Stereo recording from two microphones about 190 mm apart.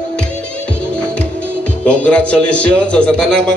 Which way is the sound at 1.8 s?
5° left (ahead or behind).